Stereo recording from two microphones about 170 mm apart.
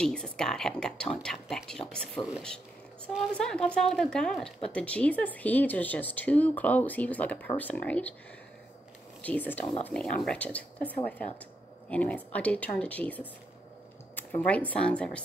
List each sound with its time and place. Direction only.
0.0 s speech: 5° left (ahead or behind)
3.3 s speech: 5° left (ahead or behind)
9.2 s speech: 10° left (ahead or behind)
14.1 s a sound: 10° left (ahead or behind)
14.7 s speech: 5° left (ahead or behind)